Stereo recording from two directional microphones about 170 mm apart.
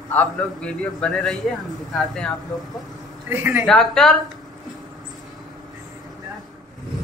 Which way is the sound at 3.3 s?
10° right (ahead or behind).